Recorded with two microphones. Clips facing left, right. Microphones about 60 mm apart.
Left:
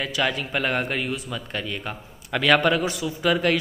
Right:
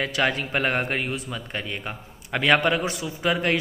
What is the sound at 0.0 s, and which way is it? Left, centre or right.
A man's voice, right.